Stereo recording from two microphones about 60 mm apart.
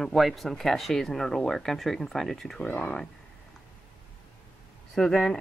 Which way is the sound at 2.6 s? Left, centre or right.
Left.